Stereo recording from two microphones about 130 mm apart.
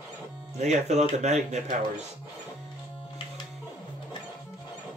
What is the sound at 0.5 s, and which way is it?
Speech, 60° right (ahead or behind).